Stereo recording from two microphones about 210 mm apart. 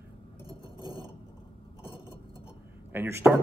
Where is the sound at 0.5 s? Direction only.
20° right (ahead or behind).